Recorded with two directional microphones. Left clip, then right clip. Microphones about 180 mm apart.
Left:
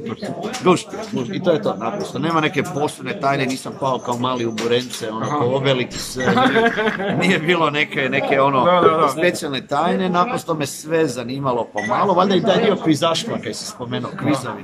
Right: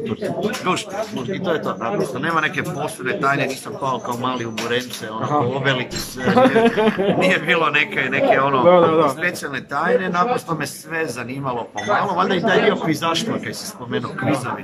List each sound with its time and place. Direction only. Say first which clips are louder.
0.7 s speech: left 4 dB; 25° left (ahead or behind)
6.2 s speech: right 1 dB; 10° right (ahead or behind)
7.2 s speech: left 2 dB; 25° left (ahead or behind)
8.6 s speech: right 5 dB; 10° right (ahead or behind)
9.2 s speech: left 4 dB; 20° left (ahead or behind)